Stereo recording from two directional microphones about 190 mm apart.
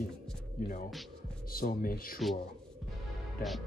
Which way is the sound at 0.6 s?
50° left (ahead or behind).